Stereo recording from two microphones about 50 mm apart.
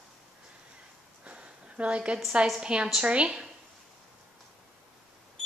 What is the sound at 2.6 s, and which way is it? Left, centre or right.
Speech, centre.